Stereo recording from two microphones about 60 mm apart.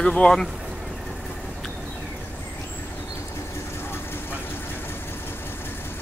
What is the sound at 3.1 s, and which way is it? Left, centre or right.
Vehicle, left.